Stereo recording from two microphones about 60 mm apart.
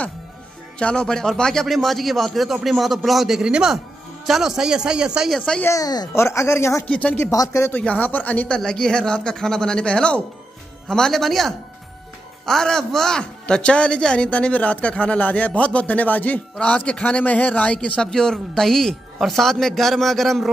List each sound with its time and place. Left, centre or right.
0.7 s speech: centre
5.7 s speech: left
6.1 s speech: left
6.9 s speech: centre
7.2 s speech: left
7.7 s speech: left
8.5 s speech: centre
18.0 s speech: centre